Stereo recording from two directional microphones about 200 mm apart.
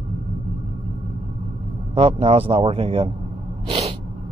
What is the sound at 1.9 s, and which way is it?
Speech, 25° right (ahead or behind).